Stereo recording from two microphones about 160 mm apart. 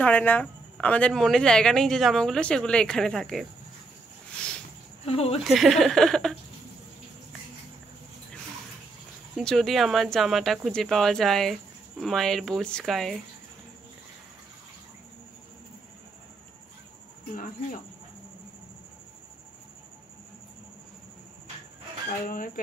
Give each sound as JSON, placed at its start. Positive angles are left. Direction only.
{"t": 0.0, "sound": "speech", "side_deg": 10}
{"t": 4.4, "sound": "a sound", "side_deg": 5}
{"t": 5.0, "sound": "speech", "side_deg": 40}
{"t": 5.4, "sound": "speech", "side_deg": 0}
{"t": 9.4, "sound": "speech", "side_deg": 0}
{"t": 22.2, "sound": "speech", "side_deg": 60}